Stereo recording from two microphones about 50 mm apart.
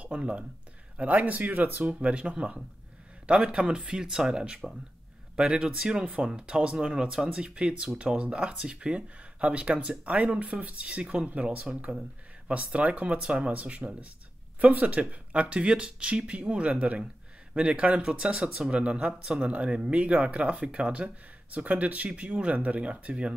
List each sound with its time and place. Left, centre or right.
0.0 s speech: right